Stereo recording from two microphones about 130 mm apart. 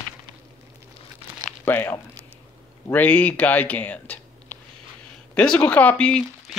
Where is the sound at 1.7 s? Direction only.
15° left (ahead or behind).